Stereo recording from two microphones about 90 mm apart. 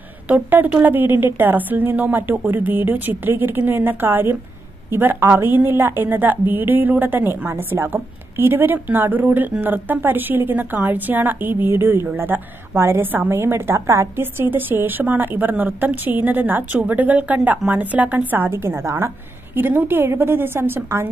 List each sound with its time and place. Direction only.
0.3 s a woman's voice: 20° right (ahead or behind)